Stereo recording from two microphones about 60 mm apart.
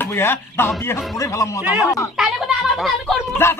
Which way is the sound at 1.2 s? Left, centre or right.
Left.